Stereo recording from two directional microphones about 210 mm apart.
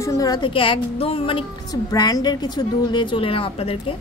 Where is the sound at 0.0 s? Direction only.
15° left (ahead or behind).